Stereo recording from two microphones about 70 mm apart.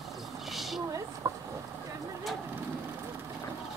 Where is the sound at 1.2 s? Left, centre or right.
Right.